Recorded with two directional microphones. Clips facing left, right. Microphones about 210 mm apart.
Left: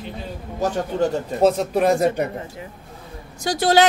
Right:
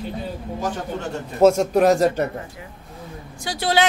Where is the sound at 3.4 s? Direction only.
45° left (ahead or behind).